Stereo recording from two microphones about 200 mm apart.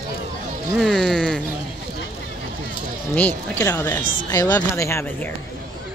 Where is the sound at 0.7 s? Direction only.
Centre (ahead or behind).